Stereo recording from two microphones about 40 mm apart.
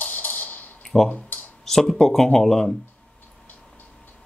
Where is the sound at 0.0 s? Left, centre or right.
Left.